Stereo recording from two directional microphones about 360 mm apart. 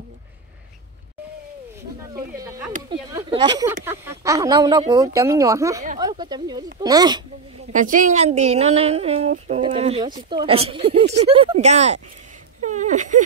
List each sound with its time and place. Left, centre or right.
2.1 s a woman's voice: centre
7.7 s a woman's voice: right
12.6 s a sound: centre